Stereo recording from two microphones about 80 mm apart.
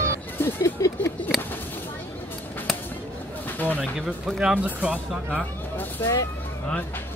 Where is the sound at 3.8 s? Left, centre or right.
Centre.